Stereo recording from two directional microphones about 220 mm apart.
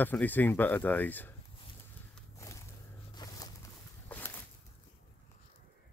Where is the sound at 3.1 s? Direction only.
15° left (ahead or behind).